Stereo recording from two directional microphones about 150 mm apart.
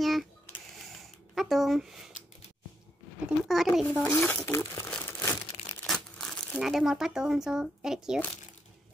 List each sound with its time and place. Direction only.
0.0 s a sound: centre (ahead or behind)
1.3 s speech: centre (ahead or behind)
3.3 s a child's voice: centre (ahead or behind)
3.8 s a child's voice: 10° left (ahead or behind)
4.7 s crumpling: 5° left (ahead or behind)
5.2 s crumpling: 25° left (ahead or behind)
5.9 s speech: 5° left (ahead or behind)